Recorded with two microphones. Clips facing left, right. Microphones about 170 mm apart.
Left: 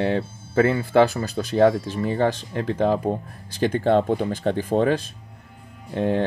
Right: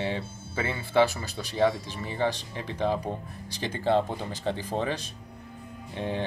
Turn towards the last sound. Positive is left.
turn(degrees=50)  # may be behind; listen again after turning